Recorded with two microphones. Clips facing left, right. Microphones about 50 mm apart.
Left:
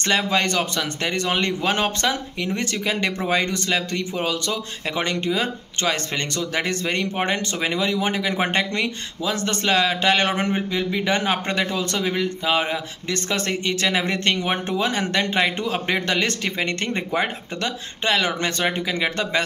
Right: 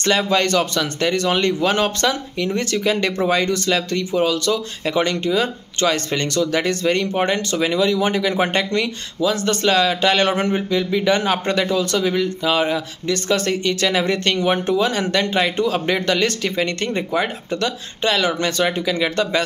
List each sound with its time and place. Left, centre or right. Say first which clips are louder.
0.3 s speech: right 4 dB; centre
8.0 s speech: right 4 dB; centre